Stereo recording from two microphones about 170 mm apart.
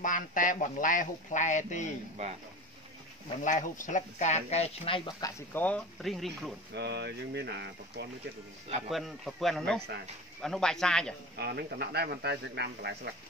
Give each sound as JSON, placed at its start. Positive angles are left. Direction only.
{"t": 0.0, "sound": "speech", "side_deg": 50}
{"t": 3.4, "sound": "speech", "side_deg": 45}
{"t": 5.5, "sound": "speech", "side_deg": 10}
{"t": 6.7, "sound": "speech", "side_deg": -80}
{"t": 8.6, "sound": "speech", "side_deg": -40}
{"t": 8.9, "sound": "speech", "side_deg": 0}
{"t": 11.3, "sound": "a man's voice", "side_deg": -70}